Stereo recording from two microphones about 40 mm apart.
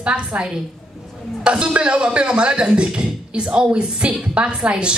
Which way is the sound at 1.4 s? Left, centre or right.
Right.